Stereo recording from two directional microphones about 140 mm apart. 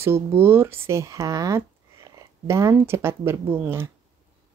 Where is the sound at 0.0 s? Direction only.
15° right (ahead or behind).